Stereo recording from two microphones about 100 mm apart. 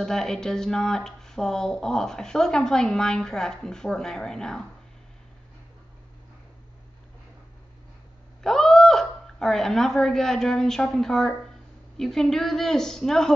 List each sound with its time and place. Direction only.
0.0 s speech: 5° left (ahead or behind)
8.4 s speech: 5° left (ahead or behind)